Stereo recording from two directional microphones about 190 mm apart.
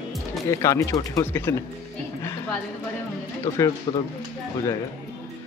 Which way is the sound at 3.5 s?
20° left (ahead or behind).